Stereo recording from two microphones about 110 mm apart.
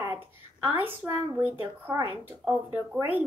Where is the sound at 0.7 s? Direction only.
20° right (ahead or behind).